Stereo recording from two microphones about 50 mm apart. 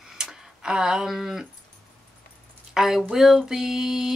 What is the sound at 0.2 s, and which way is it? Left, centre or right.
Tick-tock, centre.